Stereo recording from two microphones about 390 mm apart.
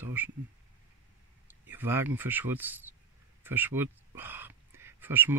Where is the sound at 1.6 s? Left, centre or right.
Centre.